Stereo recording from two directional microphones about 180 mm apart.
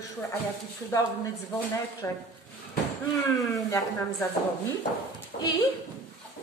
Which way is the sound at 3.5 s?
20° left (ahead or behind).